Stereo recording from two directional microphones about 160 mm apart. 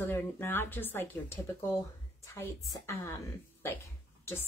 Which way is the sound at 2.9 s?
15° left (ahead or behind).